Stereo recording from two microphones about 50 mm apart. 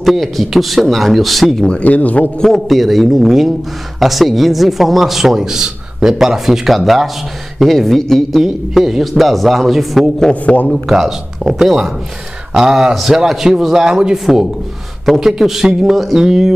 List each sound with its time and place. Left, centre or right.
0.0 s a man's voice: centre
1.6 s speech: centre
1.9 s a man's voice: left
2.4 s a man's voice: centre
10.4 s a man's voice: left
10.9 s speech: centre
14.1 s a man's voice: centre